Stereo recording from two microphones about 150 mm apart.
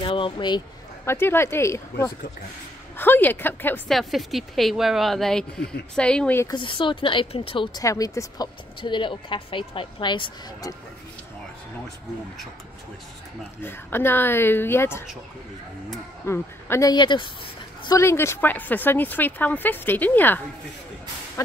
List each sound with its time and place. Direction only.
0.0 s speech: 35° left (ahead or behind)
1.0 s speech: 15° left (ahead or behind)
3.9 s speech: centre (ahead or behind)
6.4 s a woman's voice: 30° left (ahead or behind)
7.8 s a woman's voice: 20° left (ahead or behind)
13.6 s speech: 15° left (ahead or behind)
16.3 s speech: 15° left (ahead or behind)
16.9 s a woman's voice: 30° left (ahead or behind)
17.8 s speech: 20° left (ahead or behind)